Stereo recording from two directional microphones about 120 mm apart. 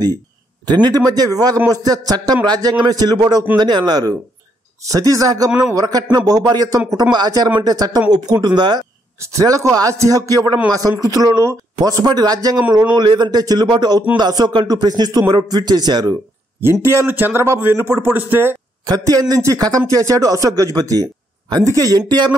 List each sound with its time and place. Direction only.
0.7 s speech: 35° right (ahead or behind)
9.2 s speech: 25° right (ahead or behind)
16.8 s speech: 20° right (ahead or behind)
18.9 s speech: 30° right (ahead or behind)